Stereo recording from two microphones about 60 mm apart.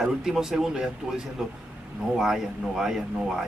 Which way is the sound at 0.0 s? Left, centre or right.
Centre.